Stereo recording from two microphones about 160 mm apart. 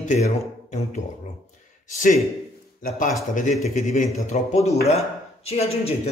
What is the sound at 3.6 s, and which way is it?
Speech, 50° left (ahead or behind).